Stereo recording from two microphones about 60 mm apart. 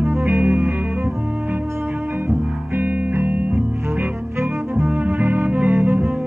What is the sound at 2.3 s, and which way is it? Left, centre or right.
Music, right.